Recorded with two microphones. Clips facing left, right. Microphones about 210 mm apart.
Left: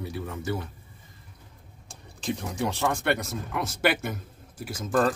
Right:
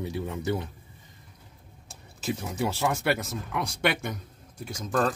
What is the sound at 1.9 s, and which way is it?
Speech, 5° right (ahead or behind).